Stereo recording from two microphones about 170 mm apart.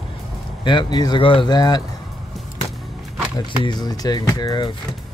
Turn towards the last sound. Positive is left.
turn(degrees=25)  # may be behind; listen again after turning